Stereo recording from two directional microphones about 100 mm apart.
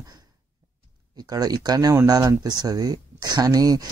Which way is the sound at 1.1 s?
40° right (ahead or behind).